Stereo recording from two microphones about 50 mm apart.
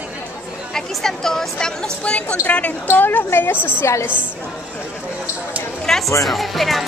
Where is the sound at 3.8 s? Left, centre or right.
Left.